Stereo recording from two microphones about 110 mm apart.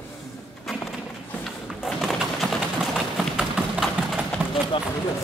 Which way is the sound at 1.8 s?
Centre (ahead or behind).